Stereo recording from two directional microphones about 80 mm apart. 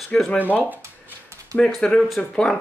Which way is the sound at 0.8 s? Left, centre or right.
Right.